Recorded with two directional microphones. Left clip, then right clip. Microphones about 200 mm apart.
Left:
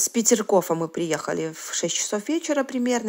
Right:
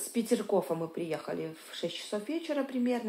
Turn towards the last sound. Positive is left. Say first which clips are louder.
# left 8 dB
turn(degrees=50)  # may be behind; listen again after turning